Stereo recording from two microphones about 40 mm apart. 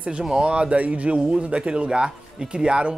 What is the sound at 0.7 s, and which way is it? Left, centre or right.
Speech, right.